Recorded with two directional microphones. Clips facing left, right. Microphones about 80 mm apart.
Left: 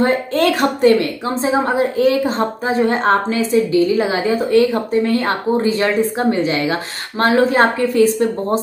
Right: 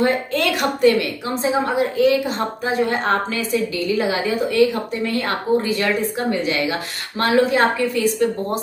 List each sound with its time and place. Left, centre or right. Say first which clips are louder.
0.0 s a woman's voice: left 4 dB; left